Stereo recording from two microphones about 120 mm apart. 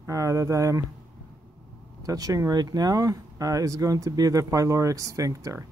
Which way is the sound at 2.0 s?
30° right (ahead or behind).